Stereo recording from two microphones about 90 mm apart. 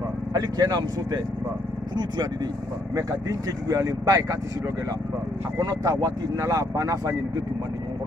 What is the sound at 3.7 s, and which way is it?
Speech, 40° right (ahead or behind).